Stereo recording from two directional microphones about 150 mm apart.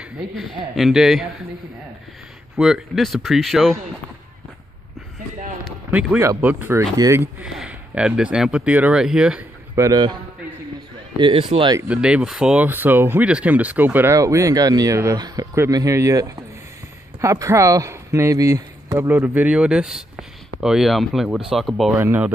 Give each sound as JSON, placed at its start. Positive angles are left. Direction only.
{"t": 0.0, "sound": "a man's voice", "side_deg": 0}
{"t": 2.5, "sound": "speech", "side_deg": -5}
{"t": 5.9, "sound": "a man's voice", "side_deg": -15}
{"t": 9.8, "sound": "a man's voice", "side_deg": -25}
{"t": 11.1, "sound": "speech", "side_deg": -35}
{"t": 11.9, "sound": "a man's voice", "side_deg": -5}
{"t": 21.9, "sound": "a man's voice", "side_deg": -15}